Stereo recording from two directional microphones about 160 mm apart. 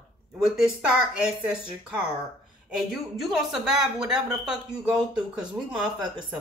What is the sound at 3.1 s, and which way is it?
A woman's voice, centre (ahead or behind).